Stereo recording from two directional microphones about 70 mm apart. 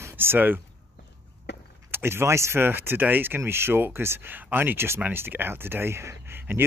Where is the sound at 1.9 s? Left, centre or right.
Right.